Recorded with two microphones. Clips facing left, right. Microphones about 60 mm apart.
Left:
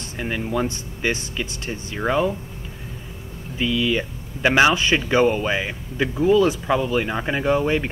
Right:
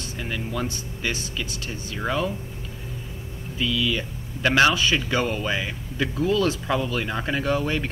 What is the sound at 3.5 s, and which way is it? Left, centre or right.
Speech, left.